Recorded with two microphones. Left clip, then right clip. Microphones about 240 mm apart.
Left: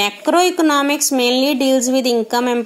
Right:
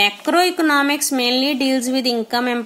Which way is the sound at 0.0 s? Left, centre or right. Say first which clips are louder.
Left 1 dB; centre.